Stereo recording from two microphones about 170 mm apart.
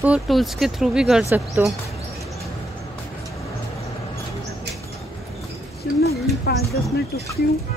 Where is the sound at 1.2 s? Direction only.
15° right (ahead or behind).